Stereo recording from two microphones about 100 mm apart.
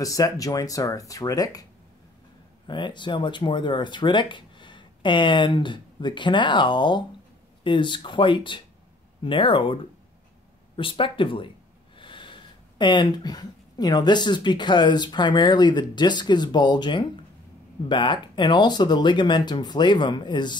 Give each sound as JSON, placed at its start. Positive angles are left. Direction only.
{"t": 0.0, "sound": "speech", "side_deg": 35}
{"t": 2.6, "sound": "speech", "side_deg": 50}
{"t": 10.8, "sound": "speech", "side_deg": 60}